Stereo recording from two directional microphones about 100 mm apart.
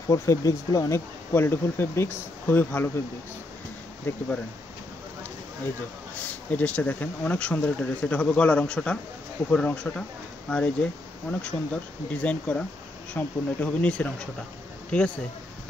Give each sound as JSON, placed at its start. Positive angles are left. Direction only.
{"t": 0.1, "sound": "speech", "side_deg": 30}
{"t": 4.1, "sound": "speech", "side_deg": 20}
{"t": 6.5, "sound": "speech", "side_deg": 15}